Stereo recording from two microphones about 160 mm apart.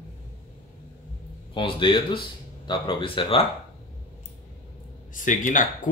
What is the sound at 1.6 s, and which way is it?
Speech, 30° left (ahead or behind).